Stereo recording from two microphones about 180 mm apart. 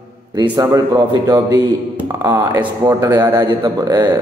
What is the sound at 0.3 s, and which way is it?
A man's voice, 20° right (ahead or behind).